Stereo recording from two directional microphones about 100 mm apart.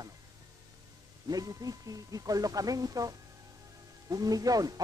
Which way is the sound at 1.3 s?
35° right (ahead or behind).